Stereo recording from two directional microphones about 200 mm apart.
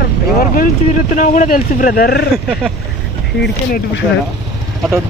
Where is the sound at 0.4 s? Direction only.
40° left (ahead or behind).